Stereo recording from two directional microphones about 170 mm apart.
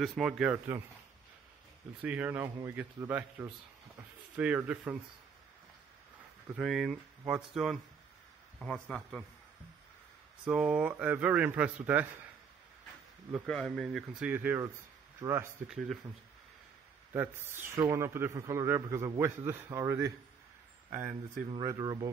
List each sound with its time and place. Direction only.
0.0 s speech: centre (ahead or behind)
2.0 s a man's voice: 10° right (ahead or behind)
6.5 s speech: centre (ahead or behind)
10.4 s a man's voice: 5° right (ahead or behind)
13.3 s speech: centre (ahead or behind)
14.3 s a man's voice: 10° right (ahead or behind)
17.1 s a man's voice: 15° right (ahead or behind)
21.6 s speech: 20° right (ahead or behind)